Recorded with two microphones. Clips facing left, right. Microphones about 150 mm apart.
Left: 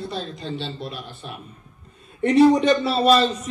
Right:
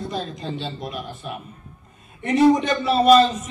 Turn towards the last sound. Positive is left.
turn(degrees=30)  # may be behind; listen again after turning